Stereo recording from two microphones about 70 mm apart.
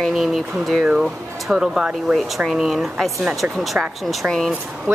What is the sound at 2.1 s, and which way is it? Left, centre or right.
Speech, centre.